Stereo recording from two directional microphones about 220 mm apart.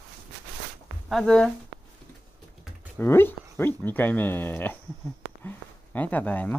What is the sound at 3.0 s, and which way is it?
Speech, 10° left (ahead or behind).